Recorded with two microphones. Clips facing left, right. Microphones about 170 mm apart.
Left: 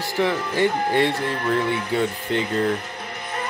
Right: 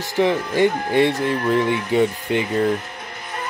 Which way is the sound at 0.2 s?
15° right (ahead or behind).